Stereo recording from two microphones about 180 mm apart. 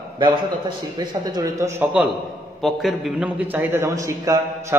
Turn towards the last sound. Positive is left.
turn(degrees=-15)  # may be behind; listen again after turning